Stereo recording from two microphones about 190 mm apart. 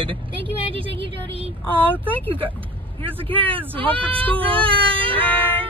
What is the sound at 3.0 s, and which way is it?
A woman's voice, 30° right (ahead or behind).